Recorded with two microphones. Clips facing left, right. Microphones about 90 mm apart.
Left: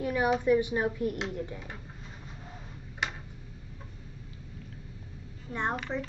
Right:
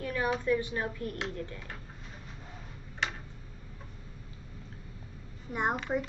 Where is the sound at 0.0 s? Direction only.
15° left (ahead or behind).